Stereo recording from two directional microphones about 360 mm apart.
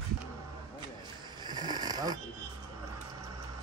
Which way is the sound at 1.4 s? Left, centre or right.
Centre.